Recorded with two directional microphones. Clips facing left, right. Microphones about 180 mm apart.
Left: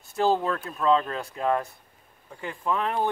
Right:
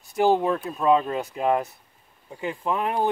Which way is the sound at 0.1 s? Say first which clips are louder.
Right 3 dB; 15° right (ahead or behind).